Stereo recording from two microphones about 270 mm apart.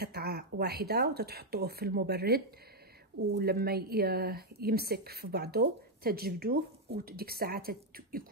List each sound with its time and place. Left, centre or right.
0.0 s speech: right